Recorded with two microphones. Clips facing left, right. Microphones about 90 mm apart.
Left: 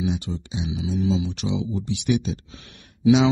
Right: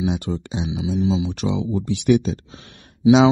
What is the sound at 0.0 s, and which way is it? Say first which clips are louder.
Speech: right 3 dB; 60° right (ahead or behind).